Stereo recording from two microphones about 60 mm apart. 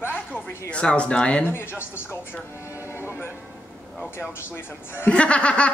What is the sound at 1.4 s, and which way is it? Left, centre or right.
Speech, left.